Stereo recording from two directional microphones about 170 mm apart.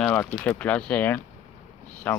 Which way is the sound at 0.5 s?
10° left (ahead or behind).